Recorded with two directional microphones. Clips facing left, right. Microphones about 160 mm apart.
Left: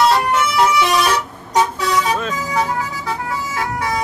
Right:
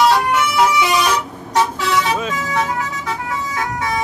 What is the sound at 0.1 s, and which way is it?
Vehicle, centre (ahead or behind).